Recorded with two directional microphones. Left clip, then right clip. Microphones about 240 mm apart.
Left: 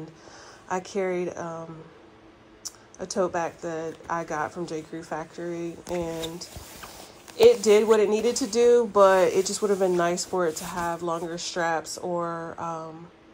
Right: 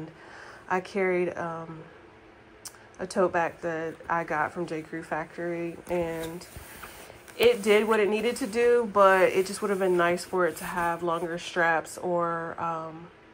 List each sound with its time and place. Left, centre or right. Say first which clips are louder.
0.7 s a woman's voice: right 1 dB; centre
3.0 s a woman's voice: right 1 dB; centre
7.3 s a woman's voice: left 4 dB; centre